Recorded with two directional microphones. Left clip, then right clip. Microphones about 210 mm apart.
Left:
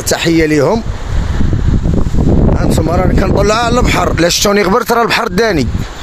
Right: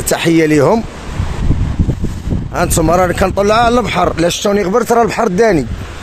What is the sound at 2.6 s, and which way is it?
Speech, 10° right (ahead or behind).